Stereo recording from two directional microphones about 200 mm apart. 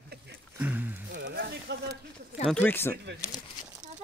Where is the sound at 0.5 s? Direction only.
10° right (ahead or behind).